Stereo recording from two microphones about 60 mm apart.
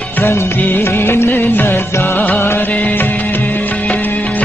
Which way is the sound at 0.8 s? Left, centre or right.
Left.